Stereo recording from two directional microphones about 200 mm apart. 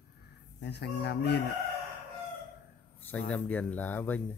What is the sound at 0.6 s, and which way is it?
Speech, 60° left (ahead or behind).